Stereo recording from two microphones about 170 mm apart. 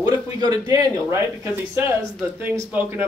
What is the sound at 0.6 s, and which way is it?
A man's voice, 20° right (ahead or behind).